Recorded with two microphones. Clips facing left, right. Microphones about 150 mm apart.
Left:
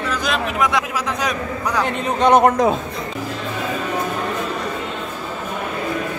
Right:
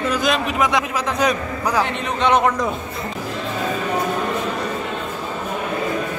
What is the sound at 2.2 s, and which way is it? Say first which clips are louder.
Speech: left 4 dB; 45° left (ahead or behind).